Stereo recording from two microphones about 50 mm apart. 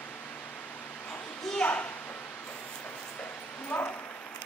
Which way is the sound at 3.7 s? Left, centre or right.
Left.